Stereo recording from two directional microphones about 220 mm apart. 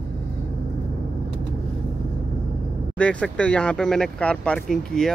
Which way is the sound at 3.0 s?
5° left (ahead or behind).